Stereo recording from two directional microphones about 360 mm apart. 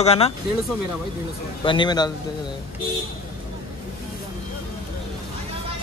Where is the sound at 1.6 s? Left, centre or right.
Centre.